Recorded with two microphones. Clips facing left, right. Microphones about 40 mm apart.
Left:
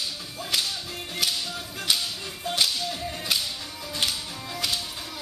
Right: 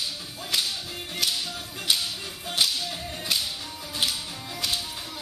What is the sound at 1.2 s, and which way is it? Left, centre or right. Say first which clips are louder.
Whip: even; centre.